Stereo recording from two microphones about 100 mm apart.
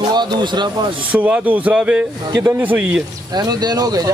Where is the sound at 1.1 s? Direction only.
15° right (ahead or behind).